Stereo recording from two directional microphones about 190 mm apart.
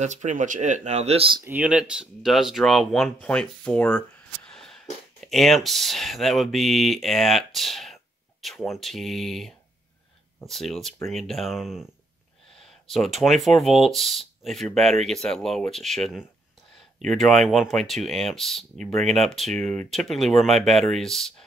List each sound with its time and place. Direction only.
0.0 s speech: 40° right (ahead or behind)
1.4 s speech: 10° right (ahead or behind)